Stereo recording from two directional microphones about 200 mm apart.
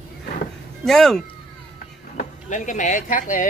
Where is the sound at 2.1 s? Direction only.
40° left (ahead or behind).